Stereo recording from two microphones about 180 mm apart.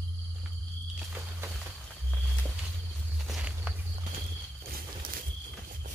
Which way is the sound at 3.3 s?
5° right (ahead or behind).